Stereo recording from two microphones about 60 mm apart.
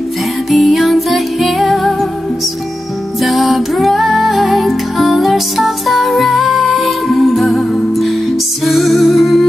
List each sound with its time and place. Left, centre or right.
0.5 s music: centre
3.2 s music: centre